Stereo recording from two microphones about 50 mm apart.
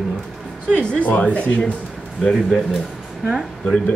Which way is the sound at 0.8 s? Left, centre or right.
Left.